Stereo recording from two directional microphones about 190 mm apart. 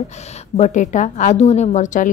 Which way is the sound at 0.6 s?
40° left (ahead or behind).